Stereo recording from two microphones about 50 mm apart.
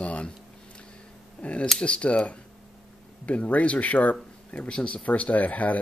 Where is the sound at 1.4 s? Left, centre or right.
Left.